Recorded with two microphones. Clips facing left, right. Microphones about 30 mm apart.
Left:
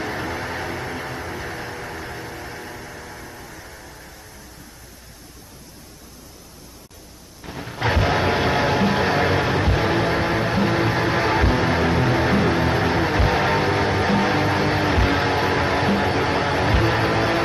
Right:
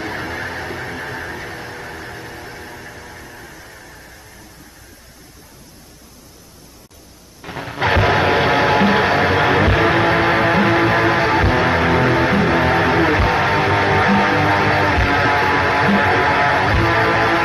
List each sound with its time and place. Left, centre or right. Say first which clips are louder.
0.0 s vehicle: right 2 dB; centre
7.4 s music: right 5 dB; right
9.5 s music: right 6 dB; right